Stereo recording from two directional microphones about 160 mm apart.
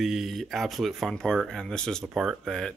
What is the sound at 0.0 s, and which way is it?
Speech, centre (ahead or behind).